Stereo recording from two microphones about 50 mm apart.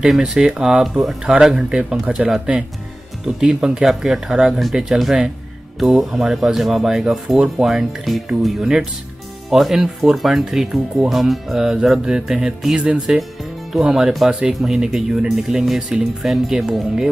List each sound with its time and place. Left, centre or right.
0.2 s speech: centre
14.5 s speech: centre